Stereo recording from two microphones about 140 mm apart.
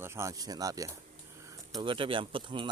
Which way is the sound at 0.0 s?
20° right (ahead or behind).